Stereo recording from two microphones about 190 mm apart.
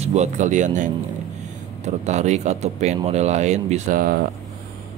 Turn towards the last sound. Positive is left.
turn(degrees=-50)  # may be behind; listen again after turning